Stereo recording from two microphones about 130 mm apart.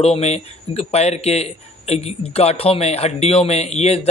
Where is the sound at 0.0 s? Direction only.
55° left (ahead or behind).